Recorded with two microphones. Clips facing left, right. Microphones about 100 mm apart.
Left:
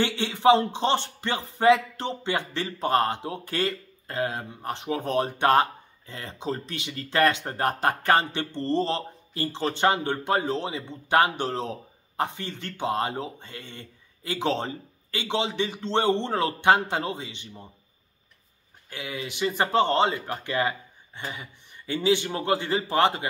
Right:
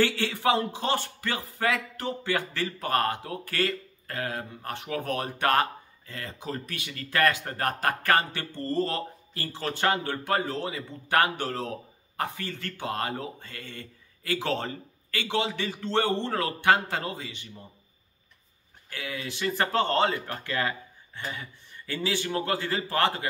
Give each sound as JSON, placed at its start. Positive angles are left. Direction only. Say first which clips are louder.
{"t": 0.0, "sound": "speech", "louder": "left 3 dB", "side_deg": 20}
{"t": 18.9, "sound": "speech", "louder": "left 1 dB", "side_deg": 20}